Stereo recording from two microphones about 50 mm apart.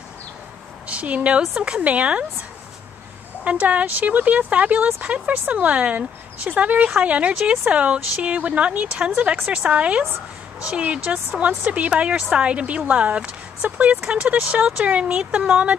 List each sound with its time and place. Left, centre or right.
0.8 s speech: right
3.4 s speech: right